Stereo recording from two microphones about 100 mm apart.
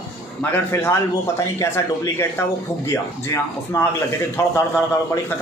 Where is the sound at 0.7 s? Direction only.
25° left (ahead or behind).